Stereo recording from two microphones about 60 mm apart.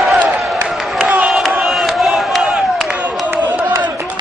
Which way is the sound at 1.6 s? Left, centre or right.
Centre.